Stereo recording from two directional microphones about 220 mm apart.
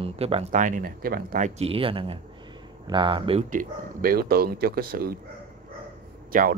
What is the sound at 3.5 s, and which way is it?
Speech, 40° right (ahead or behind).